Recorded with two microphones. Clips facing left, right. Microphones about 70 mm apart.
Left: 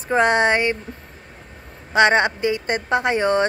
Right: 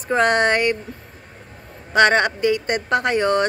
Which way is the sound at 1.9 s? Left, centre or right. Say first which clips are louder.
Even; centre.